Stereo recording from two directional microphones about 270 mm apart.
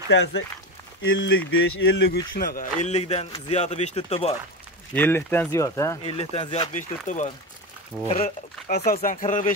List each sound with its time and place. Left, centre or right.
0.1 s a man's voice: left
4.9 s speech: centre
6.1 s a man's voice: left